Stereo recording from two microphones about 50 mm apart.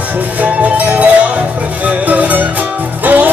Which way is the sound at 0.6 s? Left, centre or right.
Right.